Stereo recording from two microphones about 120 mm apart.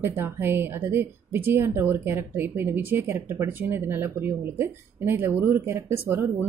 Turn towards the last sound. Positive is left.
turn(degrees=-20)  # may be behind; listen again after turning